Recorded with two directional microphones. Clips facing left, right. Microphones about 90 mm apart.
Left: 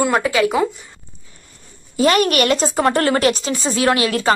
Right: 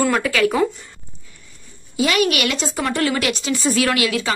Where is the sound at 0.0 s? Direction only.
25° left (ahead or behind).